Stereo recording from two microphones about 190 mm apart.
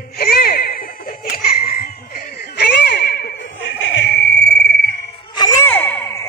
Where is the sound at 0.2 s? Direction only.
55° left (ahead or behind).